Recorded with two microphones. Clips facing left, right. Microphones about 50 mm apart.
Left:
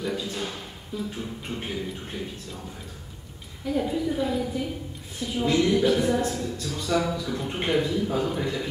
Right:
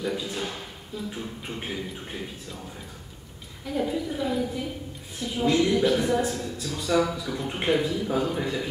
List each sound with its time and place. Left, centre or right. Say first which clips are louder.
0.0 s speech: even; centre
3.6 s a woman's voice: left 2 dB; centre